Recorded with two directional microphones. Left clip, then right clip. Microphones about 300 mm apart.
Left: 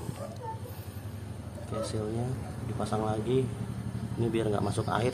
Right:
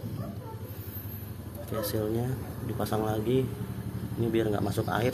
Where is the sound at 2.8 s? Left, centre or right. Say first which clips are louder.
Right 1 dB; centre.